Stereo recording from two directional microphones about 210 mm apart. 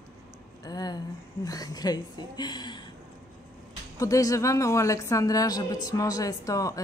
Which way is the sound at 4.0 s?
15° left (ahead or behind).